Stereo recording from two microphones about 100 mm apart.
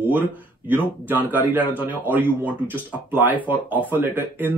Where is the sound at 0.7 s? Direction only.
20° right (ahead or behind).